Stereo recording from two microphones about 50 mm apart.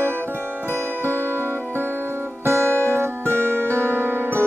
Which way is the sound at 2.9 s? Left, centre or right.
Right.